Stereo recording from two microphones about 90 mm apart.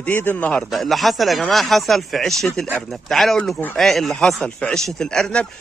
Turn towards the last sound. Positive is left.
turn(degrees=10)  # may be behind; listen again after turning